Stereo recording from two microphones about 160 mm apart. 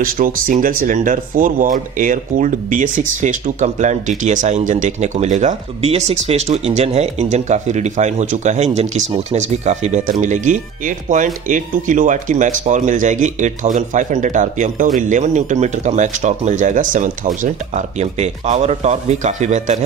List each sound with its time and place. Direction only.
0.0 s speech: 55° right (ahead or behind)